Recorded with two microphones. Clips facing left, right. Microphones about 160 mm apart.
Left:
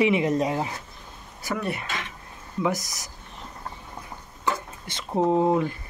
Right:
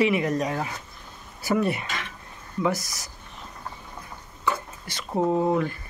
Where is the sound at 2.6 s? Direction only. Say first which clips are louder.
Right 1 dB; 15° left (ahead or behind).